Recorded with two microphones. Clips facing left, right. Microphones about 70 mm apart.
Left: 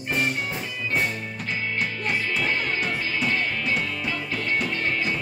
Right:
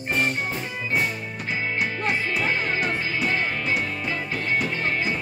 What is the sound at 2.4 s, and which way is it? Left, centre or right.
Music, right.